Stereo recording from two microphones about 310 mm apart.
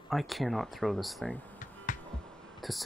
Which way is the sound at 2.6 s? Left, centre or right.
Centre.